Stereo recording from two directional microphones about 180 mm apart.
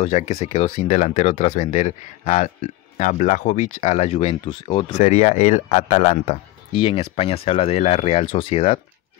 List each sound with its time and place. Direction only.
0.0 s speech: 40° left (ahead or behind)
4.9 s speech: 40° left (ahead or behind)